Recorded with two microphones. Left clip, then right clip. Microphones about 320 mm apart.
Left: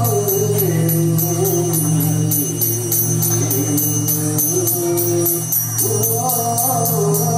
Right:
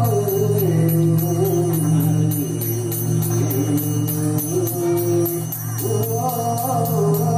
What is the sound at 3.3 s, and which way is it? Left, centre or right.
Music, centre.